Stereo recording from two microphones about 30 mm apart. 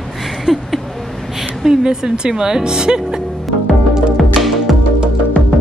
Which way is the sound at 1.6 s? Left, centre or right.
Centre.